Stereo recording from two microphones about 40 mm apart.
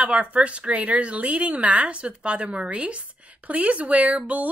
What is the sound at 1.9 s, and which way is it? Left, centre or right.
A woman's voice, right.